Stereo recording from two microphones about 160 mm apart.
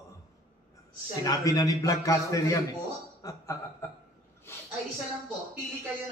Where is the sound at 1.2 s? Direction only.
20° left (ahead or behind).